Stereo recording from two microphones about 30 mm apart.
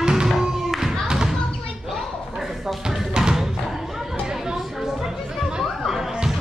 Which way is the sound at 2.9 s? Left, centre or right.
Right.